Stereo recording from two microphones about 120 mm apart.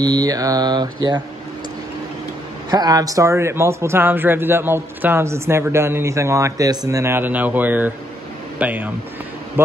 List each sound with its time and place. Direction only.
0.0 s mantra: 30° right (ahead or behind)
2.7 s a man's voice: 30° right (ahead or behind); by 8.9 s 15° right (ahead or behind)